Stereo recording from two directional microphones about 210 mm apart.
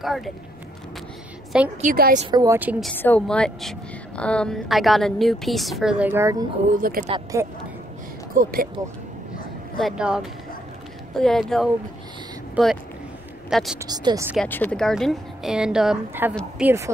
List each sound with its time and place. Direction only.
0.0 s a woman's voice: centre (ahead or behind)
1.8 s a woman's voice: 40° right (ahead or behind)
2.3 s a woman's voice: 15° right (ahead or behind)
3.0 s a woman's voice: 5° left (ahead or behind); by 6.4 s 15° right (ahead or behind)
6.7 s a woman's voice: 40° right (ahead or behind)
8.4 s speech: 45° right (ahead or behind)
9.8 s a woman's voice: centre (ahead or behind)
13.7 s a woman's voice: 20° right (ahead or behind)
14.3 s a woman's voice: 5° left (ahead or behind); by 16.9 s 10° right (ahead or behind)